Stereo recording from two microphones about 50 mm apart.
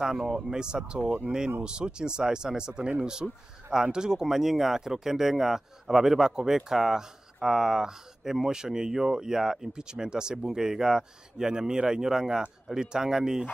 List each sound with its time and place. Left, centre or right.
0.0 s speech: centre